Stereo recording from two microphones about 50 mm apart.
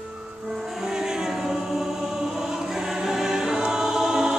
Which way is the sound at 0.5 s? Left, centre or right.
Centre.